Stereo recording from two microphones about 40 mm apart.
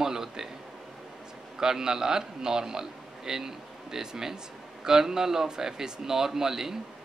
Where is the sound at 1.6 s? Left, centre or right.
Centre.